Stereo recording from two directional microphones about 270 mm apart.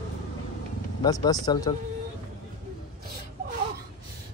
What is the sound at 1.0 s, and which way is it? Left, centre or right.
Speech, centre.